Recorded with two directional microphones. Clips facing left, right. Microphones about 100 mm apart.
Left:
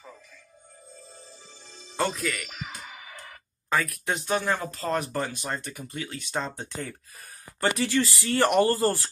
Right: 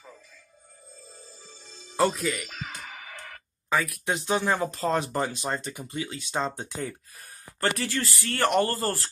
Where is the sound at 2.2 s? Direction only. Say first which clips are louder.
Right 2 dB; 15° right (ahead or behind).